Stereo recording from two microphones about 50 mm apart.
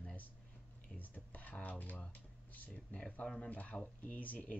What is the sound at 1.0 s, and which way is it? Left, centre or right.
Speech, left.